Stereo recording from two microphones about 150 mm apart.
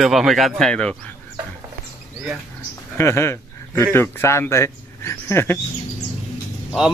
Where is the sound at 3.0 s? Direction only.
15° left (ahead or behind).